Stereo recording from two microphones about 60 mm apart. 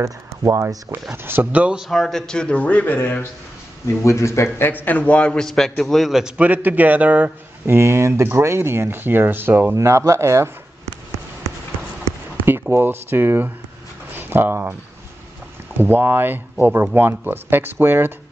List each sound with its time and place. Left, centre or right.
0.0 s speech: right
1.1 s speech: right
1.5 s a man's voice: right
1.9 s a man's voice: centre; by 3.3 s left
3.8 s a man's voice: left; by 6.3 s centre
6.3 s a man's voice: right
7.6 s speech: right
9.8 s speech: right
12.4 s speech: right
15.8 s speech: right